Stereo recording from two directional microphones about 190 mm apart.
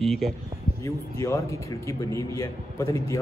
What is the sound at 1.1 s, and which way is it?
A man's voice, 15° left (ahead or behind).